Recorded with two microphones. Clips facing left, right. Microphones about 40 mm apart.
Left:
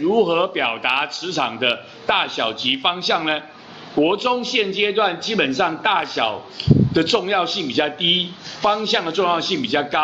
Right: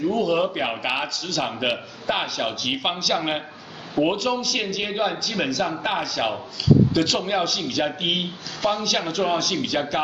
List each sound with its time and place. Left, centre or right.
0.0 s a man's voice: left
8.7 s a man's voice: left